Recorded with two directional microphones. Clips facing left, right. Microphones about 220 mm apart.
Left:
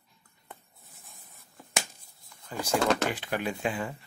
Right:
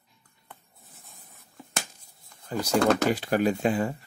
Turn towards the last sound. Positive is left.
turn(degrees=-40)  # may be behind; listen again after turning